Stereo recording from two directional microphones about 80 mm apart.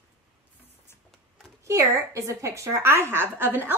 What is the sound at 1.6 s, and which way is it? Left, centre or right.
A woman's voice, right.